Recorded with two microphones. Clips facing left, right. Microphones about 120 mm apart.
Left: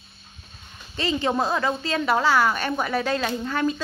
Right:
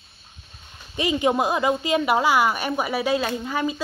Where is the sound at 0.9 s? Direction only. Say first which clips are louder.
Right 2 dB; 15° right (ahead or behind).